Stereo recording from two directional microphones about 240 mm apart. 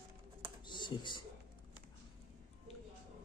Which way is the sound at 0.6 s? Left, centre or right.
Centre.